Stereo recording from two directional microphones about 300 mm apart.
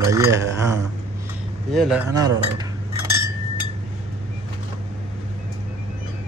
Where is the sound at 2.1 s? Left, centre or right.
Centre.